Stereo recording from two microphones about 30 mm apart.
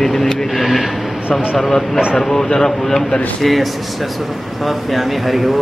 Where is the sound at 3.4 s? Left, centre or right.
Centre.